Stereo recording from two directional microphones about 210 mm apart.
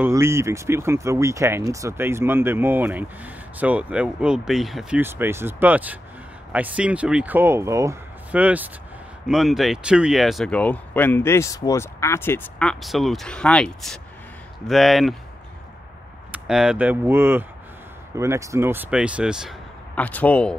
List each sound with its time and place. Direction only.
0.0 s speech: 10° right (ahead or behind)
16.3 s speech: 5° right (ahead or behind)
20.0 s speech: 5° left (ahead or behind)